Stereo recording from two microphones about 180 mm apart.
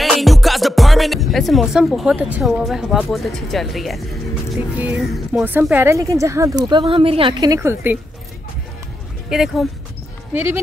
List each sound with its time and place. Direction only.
0.0 s speech: centre (ahead or behind)
9.3 s speech: centre (ahead or behind)
10.3 s speech: 10° right (ahead or behind)